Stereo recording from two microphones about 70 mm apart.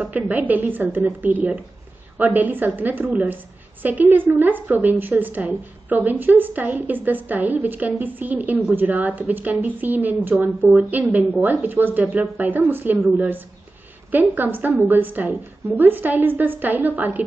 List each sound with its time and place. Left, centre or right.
0.0 s a woman's voice: right
14.1 s a woman's voice: right